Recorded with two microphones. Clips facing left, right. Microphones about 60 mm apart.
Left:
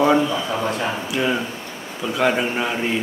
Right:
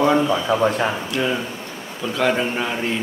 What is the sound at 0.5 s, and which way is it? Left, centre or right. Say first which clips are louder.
Speech: right 6 dB; right.